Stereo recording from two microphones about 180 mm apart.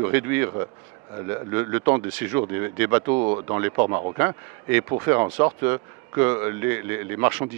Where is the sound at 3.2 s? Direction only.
30° right (ahead or behind).